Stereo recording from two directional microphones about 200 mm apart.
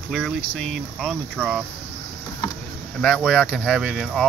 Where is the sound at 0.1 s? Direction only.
5° left (ahead or behind).